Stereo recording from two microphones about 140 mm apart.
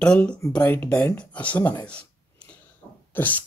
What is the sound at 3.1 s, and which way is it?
Speech, 10° left (ahead or behind).